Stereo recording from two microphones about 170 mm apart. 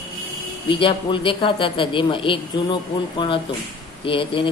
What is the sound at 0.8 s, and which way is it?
A woman's voice, 30° left (ahead or behind).